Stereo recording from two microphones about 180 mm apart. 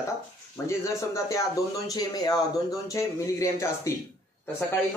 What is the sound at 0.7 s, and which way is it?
Speech, 15° left (ahead or behind).